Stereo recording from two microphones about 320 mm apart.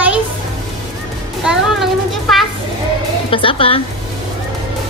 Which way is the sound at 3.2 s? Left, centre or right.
Centre.